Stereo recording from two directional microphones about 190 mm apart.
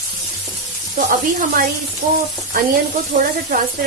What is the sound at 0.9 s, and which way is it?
Speech, 50° right (ahead or behind).